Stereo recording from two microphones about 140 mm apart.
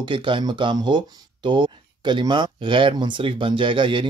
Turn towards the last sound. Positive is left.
turn(degrees=-35)  # may be behind; listen again after turning